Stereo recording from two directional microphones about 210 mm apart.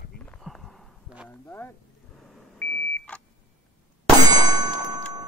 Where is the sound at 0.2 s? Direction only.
5° left (ahead or behind).